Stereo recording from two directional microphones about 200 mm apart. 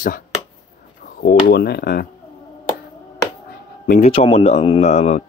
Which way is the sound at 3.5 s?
45° left (ahead or behind).